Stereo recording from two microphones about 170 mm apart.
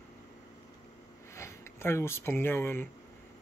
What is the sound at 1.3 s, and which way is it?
Speech, 15° left (ahead or behind).